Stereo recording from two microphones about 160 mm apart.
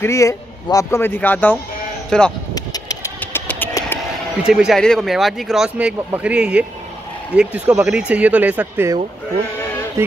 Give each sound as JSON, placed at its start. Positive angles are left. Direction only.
{"t": 0.0, "sound": "a man's voice", "side_deg": 20}
{"t": 2.5, "sound": "a sound", "side_deg": 25}
{"t": 3.2, "sound": "vehicle", "side_deg": 10}
{"t": 4.4, "sound": "speech", "side_deg": -5}
{"t": 10.0, "sound": "speech", "side_deg": -15}